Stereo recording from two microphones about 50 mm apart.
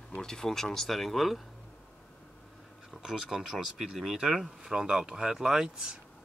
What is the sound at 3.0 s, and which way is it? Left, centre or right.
Speech, centre.